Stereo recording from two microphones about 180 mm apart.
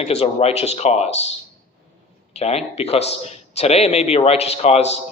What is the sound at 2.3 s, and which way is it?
Speech, 35° left (ahead or behind).